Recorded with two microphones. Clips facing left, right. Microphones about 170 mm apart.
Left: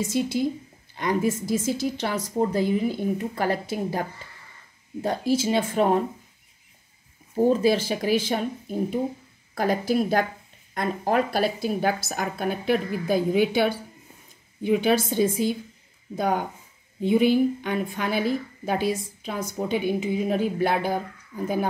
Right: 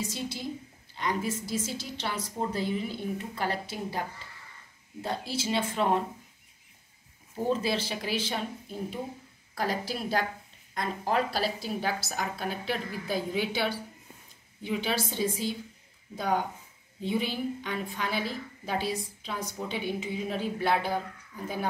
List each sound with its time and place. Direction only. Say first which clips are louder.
0.0 s a woman's voice: left 10 dB; 50° left (ahead or behind)
5.0 s a woman's voice: left 9 dB; 45° left (ahead or behind)
7.4 s a woman's voice: left 8 dB; 45° left (ahead or behind)